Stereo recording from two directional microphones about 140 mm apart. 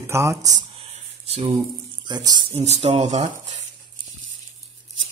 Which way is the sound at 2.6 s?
50° right (ahead or behind).